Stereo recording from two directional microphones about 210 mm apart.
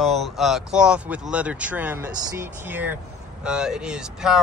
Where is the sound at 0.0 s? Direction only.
Centre (ahead or behind).